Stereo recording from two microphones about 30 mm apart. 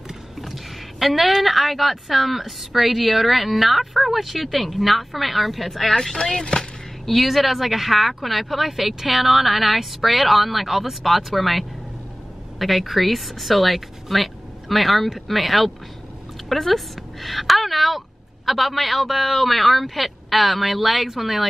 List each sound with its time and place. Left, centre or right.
0.4 s a woman's voice: centre
6.4 s speech: left
7.1 s a woman's voice: centre